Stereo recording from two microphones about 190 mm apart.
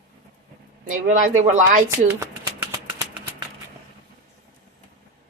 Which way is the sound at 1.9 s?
15° right (ahead or behind).